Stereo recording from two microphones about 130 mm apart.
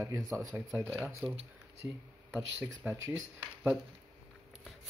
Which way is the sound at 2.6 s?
15° right (ahead or behind).